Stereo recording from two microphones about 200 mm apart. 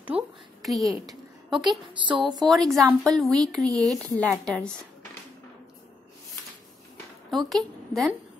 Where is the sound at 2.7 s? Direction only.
Centre (ahead or behind).